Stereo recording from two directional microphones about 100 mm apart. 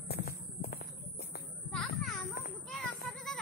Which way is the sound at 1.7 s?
5° left (ahead or behind).